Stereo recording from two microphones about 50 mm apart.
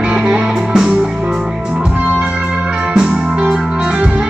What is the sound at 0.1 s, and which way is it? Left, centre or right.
Music, centre.